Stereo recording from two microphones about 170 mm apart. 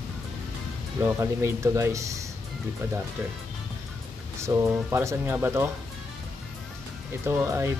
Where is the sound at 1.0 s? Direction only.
15° right (ahead or behind).